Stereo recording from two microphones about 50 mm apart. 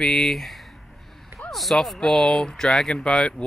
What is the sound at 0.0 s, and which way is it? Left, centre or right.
Speech, centre.